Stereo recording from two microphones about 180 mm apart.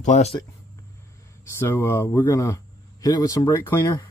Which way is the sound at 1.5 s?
10° left (ahead or behind).